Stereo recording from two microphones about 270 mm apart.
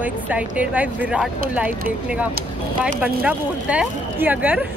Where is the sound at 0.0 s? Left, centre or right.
Centre.